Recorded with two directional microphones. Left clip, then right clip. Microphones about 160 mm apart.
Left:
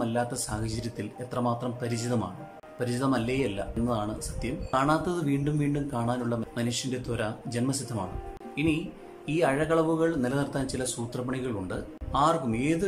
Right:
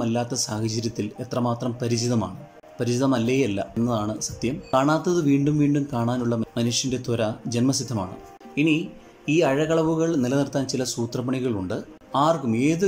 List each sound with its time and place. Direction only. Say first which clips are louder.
0.0 s speech: right 4 dB; 15° right (ahead or behind)
9.2 s speech: right 5 dB; 15° right (ahead or behind)